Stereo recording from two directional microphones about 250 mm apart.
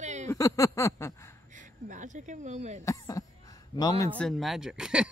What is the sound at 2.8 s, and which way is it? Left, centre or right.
Speech, centre.